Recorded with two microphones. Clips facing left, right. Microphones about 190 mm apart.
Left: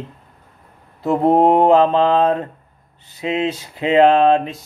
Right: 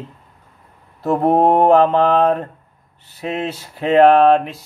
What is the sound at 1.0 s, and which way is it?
Mantra, 20° left (ahead or behind).